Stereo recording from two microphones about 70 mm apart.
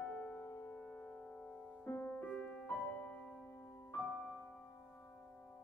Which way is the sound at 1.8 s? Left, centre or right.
Left.